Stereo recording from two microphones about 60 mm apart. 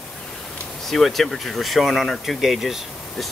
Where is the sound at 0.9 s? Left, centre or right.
Centre.